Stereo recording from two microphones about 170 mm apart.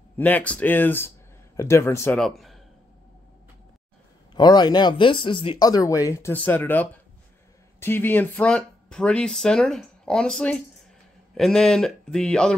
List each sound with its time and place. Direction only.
0.2 s speech: 10° left (ahead or behind)
2.1 s speech: centre (ahead or behind)
4.4 s speech: 25° left (ahead or behind); by 12.5 s 5° left (ahead or behind)